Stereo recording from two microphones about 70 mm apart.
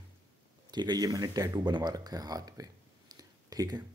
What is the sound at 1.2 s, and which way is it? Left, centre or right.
Speech, right.